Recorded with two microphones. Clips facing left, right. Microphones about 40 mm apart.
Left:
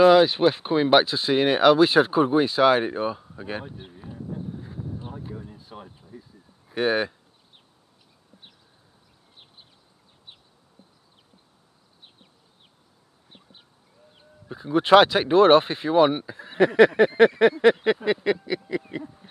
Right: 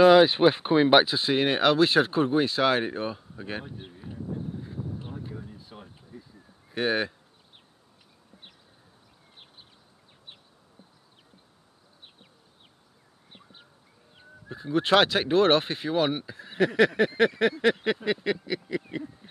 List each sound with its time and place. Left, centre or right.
0.0 s speech: centre
5.0 s a sound: centre
6.7 s speech: centre
14.5 s speech: centre